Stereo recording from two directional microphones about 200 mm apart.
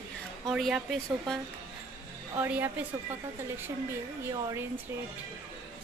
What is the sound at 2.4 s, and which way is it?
Speech, 10° right (ahead or behind).